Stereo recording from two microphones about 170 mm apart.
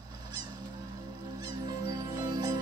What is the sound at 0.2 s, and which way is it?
Honk, 25° right (ahead or behind).